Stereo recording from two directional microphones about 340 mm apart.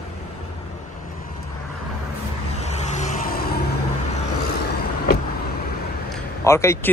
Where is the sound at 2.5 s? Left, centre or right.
Centre.